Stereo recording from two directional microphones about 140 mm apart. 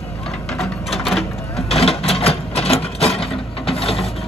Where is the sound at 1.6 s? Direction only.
45° left (ahead or behind).